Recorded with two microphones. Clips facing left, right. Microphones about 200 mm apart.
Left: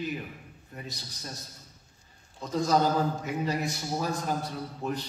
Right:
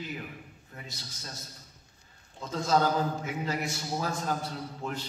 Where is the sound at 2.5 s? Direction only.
15° left (ahead or behind).